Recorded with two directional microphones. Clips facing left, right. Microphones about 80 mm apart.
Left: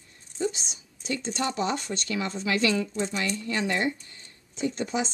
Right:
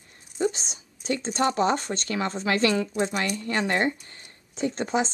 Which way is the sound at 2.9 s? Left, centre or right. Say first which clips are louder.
Right 3 dB; right.